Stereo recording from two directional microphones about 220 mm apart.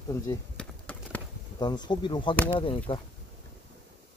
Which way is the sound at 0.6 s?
5° left (ahead or behind).